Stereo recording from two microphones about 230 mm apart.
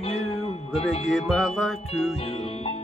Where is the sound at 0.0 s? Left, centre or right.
Left.